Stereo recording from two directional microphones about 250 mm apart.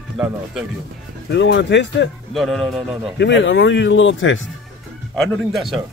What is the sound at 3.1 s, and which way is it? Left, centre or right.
Speech, left.